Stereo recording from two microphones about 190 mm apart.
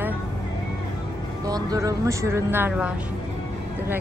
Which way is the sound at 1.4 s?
20° right (ahead or behind).